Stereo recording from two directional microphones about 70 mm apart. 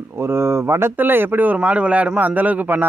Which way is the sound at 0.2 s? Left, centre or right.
Right.